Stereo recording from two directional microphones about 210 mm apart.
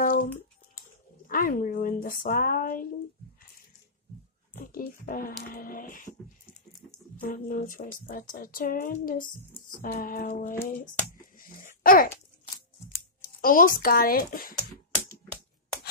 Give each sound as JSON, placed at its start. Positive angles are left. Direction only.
{"t": 0.0, "sound": "a sound", "side_deg": 40}
{"t": 1.2, "sound": "speech", "side_deg": 40}
{"t": 4.7, "sound": "speech", "side_deg": 40}
{"t": 7.2, "sound": "a child's voice", "side_deg": 40}
{"t": 13.4, "sound": "speech", "side_deg": 40}